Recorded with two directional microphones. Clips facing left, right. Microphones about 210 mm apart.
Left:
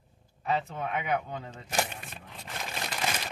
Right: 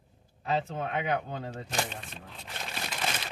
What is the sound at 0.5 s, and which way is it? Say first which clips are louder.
Speech: right 1 dB; 35° right (ahead or behind).